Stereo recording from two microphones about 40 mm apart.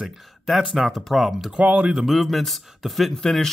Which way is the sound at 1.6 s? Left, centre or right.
Right.